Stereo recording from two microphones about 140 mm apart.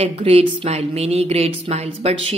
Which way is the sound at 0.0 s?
45° right (ahead or behind).